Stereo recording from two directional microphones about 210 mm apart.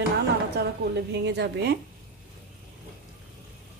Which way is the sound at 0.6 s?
55° right (ahead or behind).